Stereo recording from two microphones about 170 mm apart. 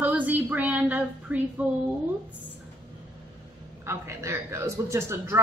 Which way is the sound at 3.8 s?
15° right (ahead or behind).